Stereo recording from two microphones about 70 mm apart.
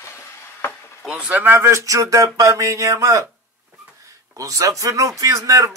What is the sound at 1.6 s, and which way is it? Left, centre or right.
Speech, right.